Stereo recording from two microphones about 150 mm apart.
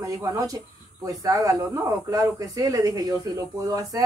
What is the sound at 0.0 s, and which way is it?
Speech, 25° right (ahead or behind).